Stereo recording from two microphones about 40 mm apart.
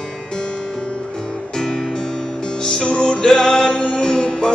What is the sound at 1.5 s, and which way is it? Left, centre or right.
Music, centre.